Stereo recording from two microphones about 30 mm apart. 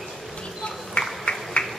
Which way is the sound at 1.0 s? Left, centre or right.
Left.